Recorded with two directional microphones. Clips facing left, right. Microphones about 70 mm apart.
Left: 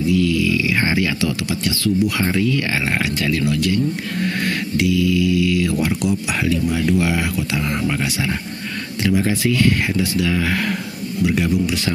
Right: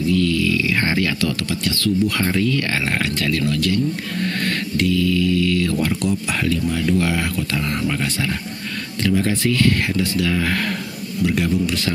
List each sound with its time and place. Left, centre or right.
0.1 s a sound: centre
1.8 s speech: centre
9.0 s speech: centre